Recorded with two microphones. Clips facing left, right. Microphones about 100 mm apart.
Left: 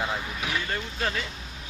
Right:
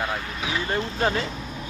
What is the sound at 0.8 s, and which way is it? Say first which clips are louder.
Speech: right 6 dB; 40° right (ahead or behind).